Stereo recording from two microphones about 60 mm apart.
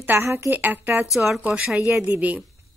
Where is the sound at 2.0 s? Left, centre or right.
Right.